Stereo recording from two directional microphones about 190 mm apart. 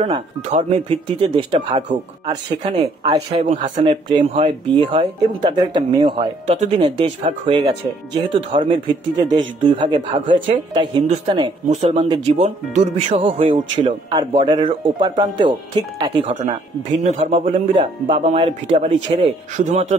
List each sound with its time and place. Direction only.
0.0 s speech: 30° right (ahead or behind)
11.7 s speech: 35° right (ahead or behind)